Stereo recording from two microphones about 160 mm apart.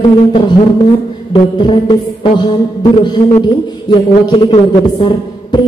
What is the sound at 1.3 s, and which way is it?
Music, 25° left (ahead or behind).